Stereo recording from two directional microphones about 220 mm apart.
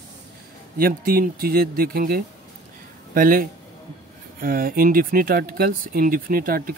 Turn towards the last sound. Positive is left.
turn(degrees=-40)  # may be behind; listen again after turning